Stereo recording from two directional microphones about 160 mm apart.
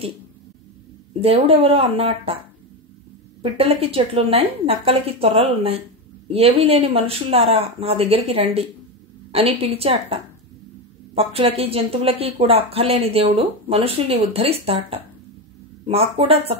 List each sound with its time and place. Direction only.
1.2 s speech: 35° right (ahead or behind)
3.4 s speech: 40° right (ahead or behind)